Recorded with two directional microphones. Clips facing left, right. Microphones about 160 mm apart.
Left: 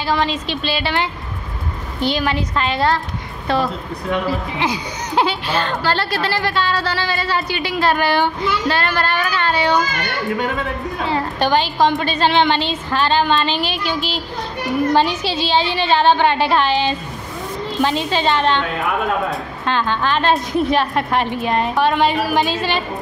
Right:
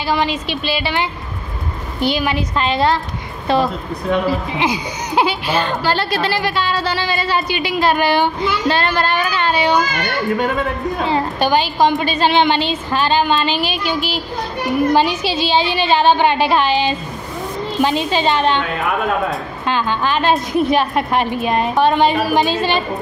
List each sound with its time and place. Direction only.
0.0 s speech: 10° right (ahead or behind)
2.5 s a woman's voice: 20° right (ahead or behind)
11.3 s speech: 10° right (ahead or behind)
19.6 s speech: 10° right (ahead or behind)